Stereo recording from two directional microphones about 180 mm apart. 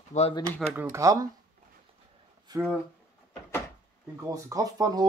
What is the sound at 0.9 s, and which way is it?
Speech, 20° right (ahead or behind).